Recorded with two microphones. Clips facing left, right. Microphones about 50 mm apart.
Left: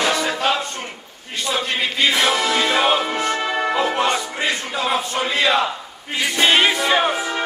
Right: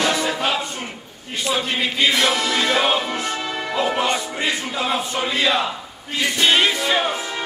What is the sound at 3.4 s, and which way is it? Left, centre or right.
Music, left.